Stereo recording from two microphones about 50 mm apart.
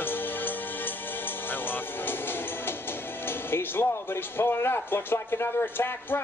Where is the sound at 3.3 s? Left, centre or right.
Left.